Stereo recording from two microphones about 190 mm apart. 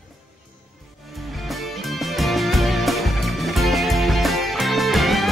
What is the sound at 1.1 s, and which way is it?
Music, centre (ahead or behind).